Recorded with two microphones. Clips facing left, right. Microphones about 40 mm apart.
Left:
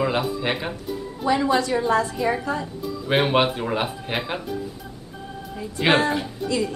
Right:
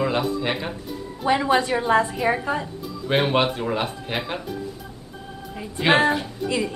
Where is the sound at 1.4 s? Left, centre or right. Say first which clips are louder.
Even; centre.